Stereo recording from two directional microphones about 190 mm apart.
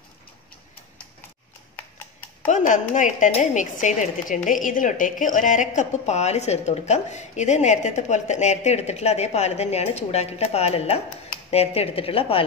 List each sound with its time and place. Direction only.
2.4 s a woman's voice: 40° left (ahead or behind)